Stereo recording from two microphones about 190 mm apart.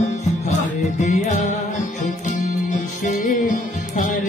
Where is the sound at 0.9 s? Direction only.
40° left (ahead or behind).